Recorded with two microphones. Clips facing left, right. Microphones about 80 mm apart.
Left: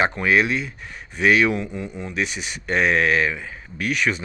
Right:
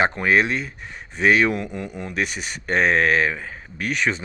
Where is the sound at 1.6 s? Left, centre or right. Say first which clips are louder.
Even; right.